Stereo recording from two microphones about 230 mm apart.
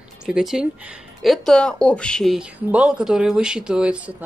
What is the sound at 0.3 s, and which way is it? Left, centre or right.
Speech, centre.